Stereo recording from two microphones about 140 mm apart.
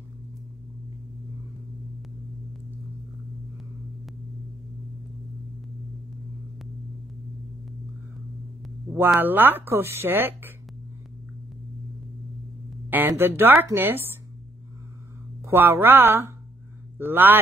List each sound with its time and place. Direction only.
9.1 s speech: 15° right (ahead or behind)
12.9 s speech: 15° right (ahead or behind)
15.4 s speech: 15° right (ahead or behind)